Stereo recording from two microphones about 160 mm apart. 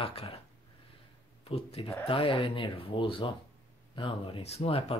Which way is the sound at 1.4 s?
35° left (ahead or behind).